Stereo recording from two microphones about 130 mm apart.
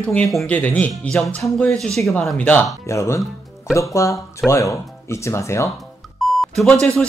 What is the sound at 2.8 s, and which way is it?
Speech, 25° left (ahead or behind).